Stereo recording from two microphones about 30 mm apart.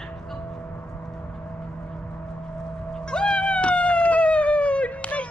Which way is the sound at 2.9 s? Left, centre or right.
Left.